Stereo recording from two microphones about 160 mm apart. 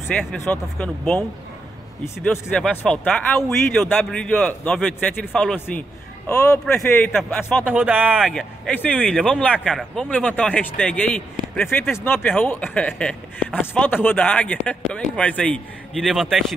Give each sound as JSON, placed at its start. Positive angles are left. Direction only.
{"t": 0.1, "sound": "speech", "side_deg": 5}
{"t": 2.3, "sound": "speech", "side_deg": 5}
{"t": 7.6, "sound": "speech", "side_deg": -10}
{"t": 8.2, "sound": "speech", "side_deg": 5}